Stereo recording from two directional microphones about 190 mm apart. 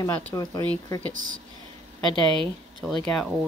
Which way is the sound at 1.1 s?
45° right (ahead or behind).